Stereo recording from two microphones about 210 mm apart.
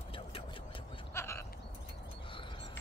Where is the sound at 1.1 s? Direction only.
10° left (ahead or behind).